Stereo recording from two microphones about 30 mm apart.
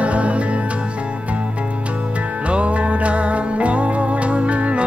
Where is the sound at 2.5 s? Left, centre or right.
Right.